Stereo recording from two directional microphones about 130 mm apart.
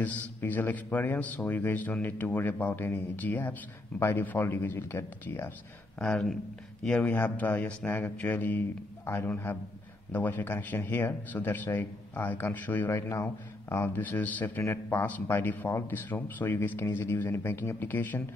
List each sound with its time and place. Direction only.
0.0 s speech: 15° left (ahead or behind)
5.9 s speech: 5° left (ahead or behind)